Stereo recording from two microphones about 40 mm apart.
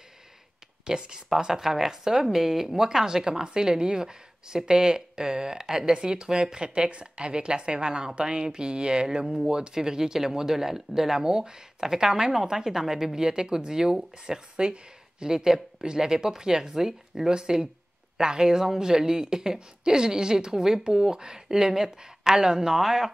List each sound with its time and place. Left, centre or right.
0.8 s speech: centre